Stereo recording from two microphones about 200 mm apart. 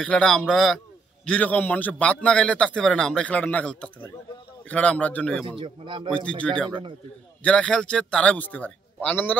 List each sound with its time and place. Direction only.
0.0 s a man's voice: 5° left (ahead or behind)
5.6 s speech: 25° right (ahead or behind)
6.1 s a man's voice: 5° left (ahead or behind)